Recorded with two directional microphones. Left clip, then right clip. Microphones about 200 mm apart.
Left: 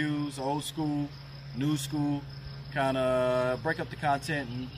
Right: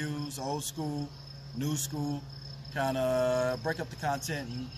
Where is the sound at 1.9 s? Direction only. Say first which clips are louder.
Left 5 dB; 5° right (ahead or behind).